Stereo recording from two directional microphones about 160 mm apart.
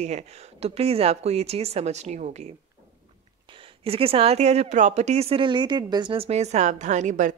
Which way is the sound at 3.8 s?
35° right (ahead or behind).